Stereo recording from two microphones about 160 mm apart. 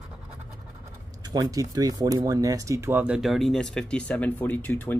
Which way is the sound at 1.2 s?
25° right (ahead or behind).